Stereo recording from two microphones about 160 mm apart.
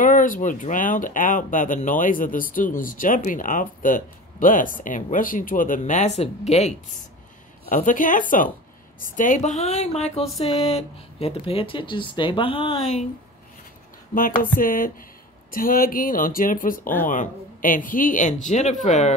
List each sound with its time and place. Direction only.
0.0 s speech: 60° left (ahead or behind); by 13.0 s 40° left (ahead or behind)
14.1 s speech: 60° left (ahead or behind); by 19.1 s 45° left (ahead or behind)